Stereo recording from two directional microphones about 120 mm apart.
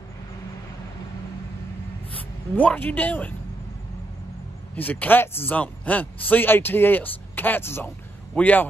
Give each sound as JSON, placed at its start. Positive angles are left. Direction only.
{"t": 2.5, "sound": "a man's voice", "side_deg": 15}
{"t": 4.7, "sound": "a man's voice", "side_deg": 15}